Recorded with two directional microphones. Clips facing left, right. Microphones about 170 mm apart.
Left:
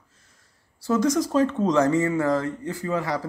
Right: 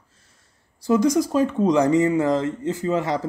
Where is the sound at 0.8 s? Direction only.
15° right (ahead or behind).